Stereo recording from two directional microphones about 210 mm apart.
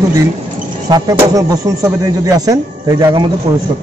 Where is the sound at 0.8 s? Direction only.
20° right (ahead or behind).